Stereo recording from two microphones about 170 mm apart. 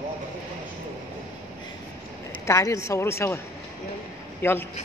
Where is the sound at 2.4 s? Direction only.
15° left (ahead or behind).